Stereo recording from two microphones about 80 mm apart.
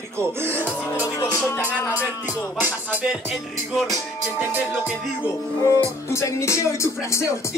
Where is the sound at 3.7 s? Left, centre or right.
Centre.